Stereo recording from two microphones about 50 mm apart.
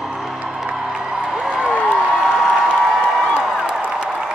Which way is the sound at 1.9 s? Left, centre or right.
Centre.